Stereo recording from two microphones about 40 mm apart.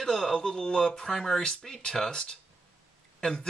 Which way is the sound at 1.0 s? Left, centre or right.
Centre.